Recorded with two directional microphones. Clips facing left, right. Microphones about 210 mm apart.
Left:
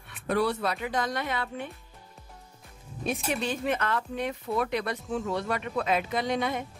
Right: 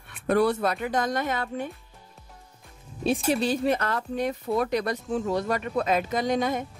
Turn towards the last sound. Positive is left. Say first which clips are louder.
# right 3 dB
turn(degrees=-45)  # may be behind; listen again after turning